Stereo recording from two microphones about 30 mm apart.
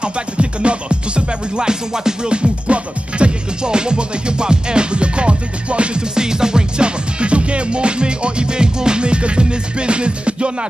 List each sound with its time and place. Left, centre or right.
0.0 s music: right
6.1 s music: right
7.2 s music: right